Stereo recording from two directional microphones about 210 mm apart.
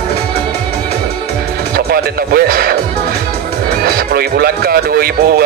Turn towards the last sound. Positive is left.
turn(degrees=-45)  # may be behind; listen again after turning